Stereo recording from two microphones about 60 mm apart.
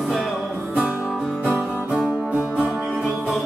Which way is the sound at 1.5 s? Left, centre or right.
Centre.